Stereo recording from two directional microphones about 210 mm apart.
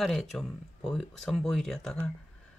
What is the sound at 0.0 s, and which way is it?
Speech, centre (ahead or behind).